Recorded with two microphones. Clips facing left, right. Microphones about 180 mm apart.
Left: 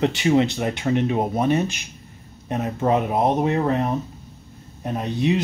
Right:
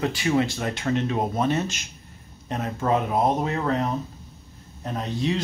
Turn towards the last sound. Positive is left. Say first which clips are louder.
# left 4 dB
turn(degrees=15)  # may be behind; listen again after turning